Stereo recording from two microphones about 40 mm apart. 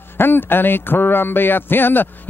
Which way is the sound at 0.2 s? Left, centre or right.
Left.